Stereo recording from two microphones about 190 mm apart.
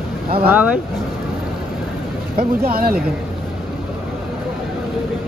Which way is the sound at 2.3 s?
50° right (ahead or behind).